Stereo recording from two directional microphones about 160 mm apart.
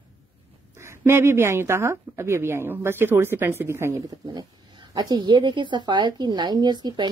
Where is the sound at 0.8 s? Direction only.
15° right (ahead or behind).